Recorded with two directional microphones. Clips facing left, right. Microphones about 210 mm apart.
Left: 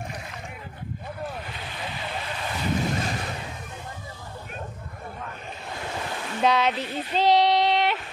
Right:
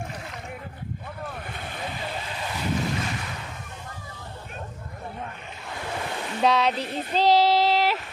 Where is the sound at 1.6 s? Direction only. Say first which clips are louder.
Right 2 dB; 50° right (ahead or behind).